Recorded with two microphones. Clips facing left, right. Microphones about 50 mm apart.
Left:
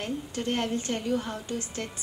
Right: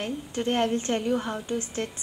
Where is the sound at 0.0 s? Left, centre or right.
Right.